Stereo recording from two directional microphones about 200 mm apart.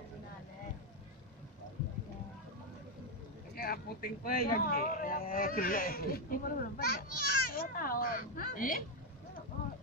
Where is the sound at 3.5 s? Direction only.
50° left (ahead or behind).